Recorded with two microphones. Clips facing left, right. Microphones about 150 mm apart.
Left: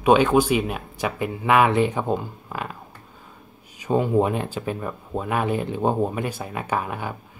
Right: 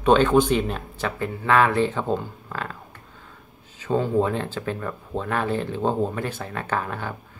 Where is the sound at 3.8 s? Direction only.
15° left (ahead or behind).